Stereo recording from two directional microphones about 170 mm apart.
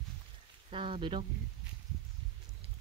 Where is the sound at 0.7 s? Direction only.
30° right (ahead or behind).